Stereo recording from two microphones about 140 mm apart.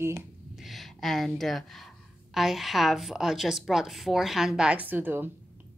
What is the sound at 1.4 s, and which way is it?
A woman's voice, centre (ahead or behind).